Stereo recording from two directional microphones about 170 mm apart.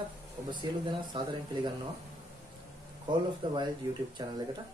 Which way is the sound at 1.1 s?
25° right (ahead or behind).